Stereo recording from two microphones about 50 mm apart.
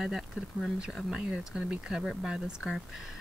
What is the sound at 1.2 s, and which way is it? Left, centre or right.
Speech, centre.